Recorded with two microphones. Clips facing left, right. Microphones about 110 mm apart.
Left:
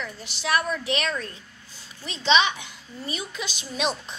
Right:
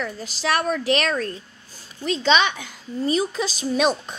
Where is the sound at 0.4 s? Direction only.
90° right; by 1.1 s 70° right (ahead or behind).